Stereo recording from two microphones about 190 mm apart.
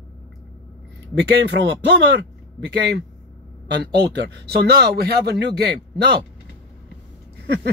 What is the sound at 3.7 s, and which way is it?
Speech, 60° right (ahead or behind).